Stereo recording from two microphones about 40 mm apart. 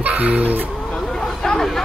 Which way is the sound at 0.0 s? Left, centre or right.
Right.